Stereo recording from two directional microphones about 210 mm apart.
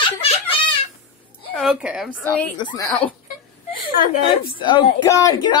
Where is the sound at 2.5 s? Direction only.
20° left (ahead or behind).